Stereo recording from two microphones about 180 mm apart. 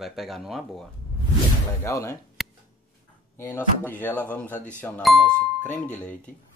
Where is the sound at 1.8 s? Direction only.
15° left (ahead or behind).